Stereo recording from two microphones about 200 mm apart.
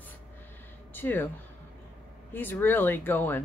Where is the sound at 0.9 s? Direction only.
10° left (ahead or behind).